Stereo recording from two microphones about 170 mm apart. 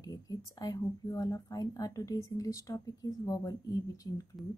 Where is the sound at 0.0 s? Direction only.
20° left (ahead or behind).